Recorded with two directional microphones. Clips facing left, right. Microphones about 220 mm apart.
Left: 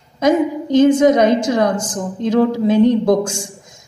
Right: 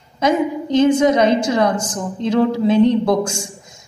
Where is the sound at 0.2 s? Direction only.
45° left (ahead or behind).